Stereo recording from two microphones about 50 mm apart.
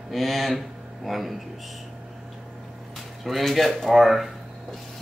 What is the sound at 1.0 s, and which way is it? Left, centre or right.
Speech, centre.